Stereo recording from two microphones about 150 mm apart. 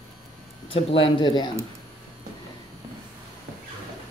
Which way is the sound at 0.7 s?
40° left (ahead or behind).